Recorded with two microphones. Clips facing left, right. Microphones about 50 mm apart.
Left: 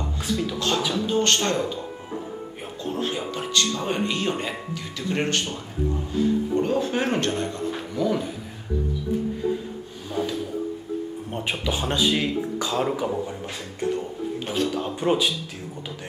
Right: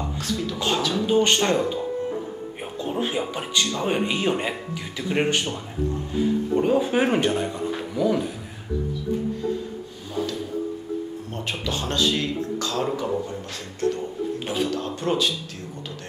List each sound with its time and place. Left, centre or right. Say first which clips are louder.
0.2 s speech: left 3 dB; centre
0.6 s speech: right 4 dB; centre
2.6 s speech: right 2 dB; centre
11.3 s speech: left 2 dB; centre
14.4 s speech: left 1 dB; centre
14.7 s speech: left 2 dB; centre